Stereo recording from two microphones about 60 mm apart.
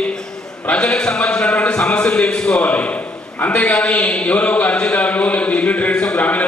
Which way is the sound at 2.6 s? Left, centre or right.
Left.